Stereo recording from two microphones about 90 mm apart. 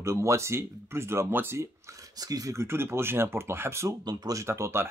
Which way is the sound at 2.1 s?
45° right (ahead or behind).